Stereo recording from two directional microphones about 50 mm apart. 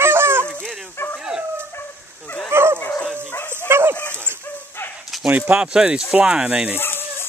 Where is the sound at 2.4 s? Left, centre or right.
Right.